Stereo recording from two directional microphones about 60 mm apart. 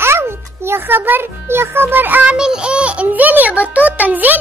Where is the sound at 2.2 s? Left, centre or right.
Centre.